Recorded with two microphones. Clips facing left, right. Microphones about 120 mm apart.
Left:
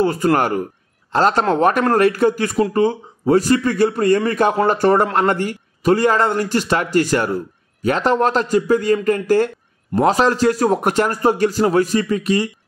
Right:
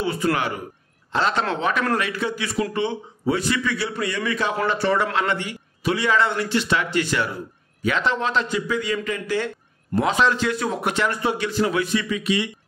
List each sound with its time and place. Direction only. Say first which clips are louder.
0.0 s a man's voice: left 7 dB; 45° left (ahead or behind)